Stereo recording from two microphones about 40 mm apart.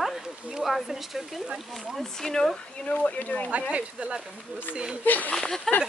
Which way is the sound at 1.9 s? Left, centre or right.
Centre.